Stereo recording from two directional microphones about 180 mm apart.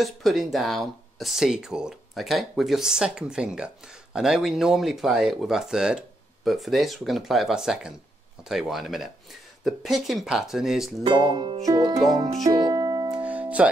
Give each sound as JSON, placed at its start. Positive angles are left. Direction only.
{"t": 0.0, "sound": "speech", "side_deg": 0}
{"t": 11.1, "sound": "speech", "side_deg": -25}
{"t": 12.4, "sound": "music", "side_deg": -20}
{"t": 13.1, "sound": "music", "side_deg": -5}